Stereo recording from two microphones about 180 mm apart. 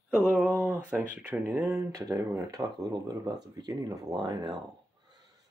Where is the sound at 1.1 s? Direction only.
10° right (ahead or behind).